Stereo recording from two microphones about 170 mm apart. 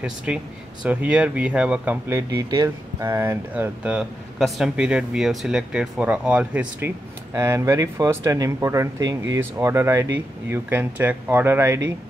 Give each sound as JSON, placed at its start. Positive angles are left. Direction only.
{"t": 0.0, "sound": "speech", "side_deg": -5}